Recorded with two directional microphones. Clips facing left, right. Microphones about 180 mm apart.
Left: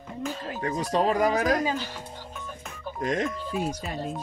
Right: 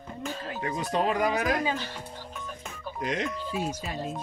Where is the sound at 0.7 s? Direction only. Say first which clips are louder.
Left 3 dB; 40° left (ahead or behind).